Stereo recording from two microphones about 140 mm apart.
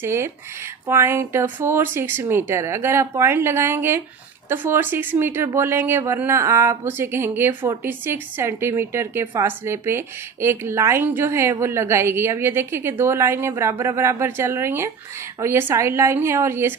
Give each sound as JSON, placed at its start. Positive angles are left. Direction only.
{"t": 0.0, "sound": "speech", "side_deg": -20}